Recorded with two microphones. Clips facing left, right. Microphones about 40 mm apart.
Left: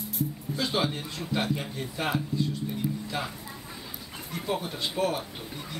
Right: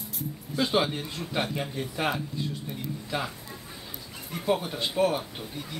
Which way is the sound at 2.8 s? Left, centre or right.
Centre.